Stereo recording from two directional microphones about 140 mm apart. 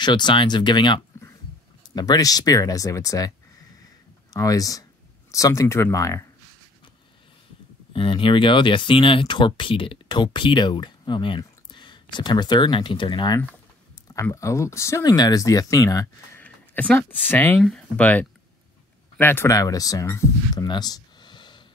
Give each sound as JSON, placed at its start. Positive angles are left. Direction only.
{"t": 0.0, "sound": "speech", "side_deg": 35}
{"t": 7.9, "sound": "speech", "side_deg": 35}
{"t": 14.1, "sound": "speech", "side_deg": 20}
{"t": 16.3, "sound": "a sound", "side_deg": 10}
{"t": 17.3, "sound": "speech", "side_deg": 20}
{"t": 17.6, "sound": "speech", "side_deg": 0}
{"t": 20.6, "sound": "a sound", "side_deg": 30}